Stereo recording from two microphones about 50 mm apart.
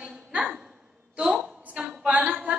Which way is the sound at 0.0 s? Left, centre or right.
Centre.